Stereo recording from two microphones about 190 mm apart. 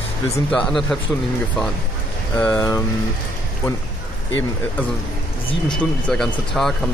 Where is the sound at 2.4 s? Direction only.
15° left (ahead or behind).